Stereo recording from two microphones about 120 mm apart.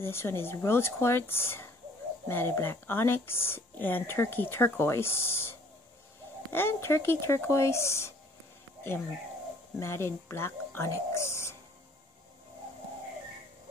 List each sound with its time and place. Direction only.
0.0 s speech: 20° left (ahead or behind)
9.8 s speech: 20° left (ahead or behind)